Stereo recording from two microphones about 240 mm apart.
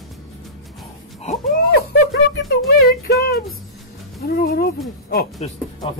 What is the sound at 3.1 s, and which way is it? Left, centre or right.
Music, left.